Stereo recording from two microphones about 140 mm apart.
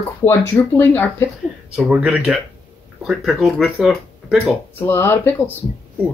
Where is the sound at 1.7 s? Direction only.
5° right (ahead or behind).